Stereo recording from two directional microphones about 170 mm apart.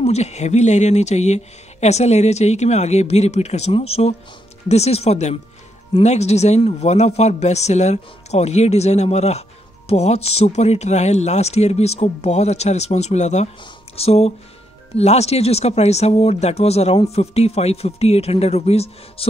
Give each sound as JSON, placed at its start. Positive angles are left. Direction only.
{"t": 0.0, "sound": "speech", "side_deg": 40}